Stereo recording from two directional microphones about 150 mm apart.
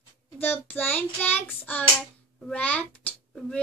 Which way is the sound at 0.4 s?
10° left (ahead or behind).